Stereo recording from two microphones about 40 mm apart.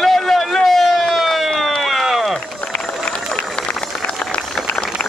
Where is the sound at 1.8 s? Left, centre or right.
Centre.